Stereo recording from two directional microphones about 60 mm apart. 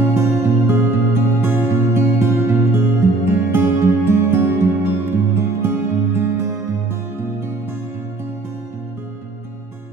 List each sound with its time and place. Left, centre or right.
0.0 s music: right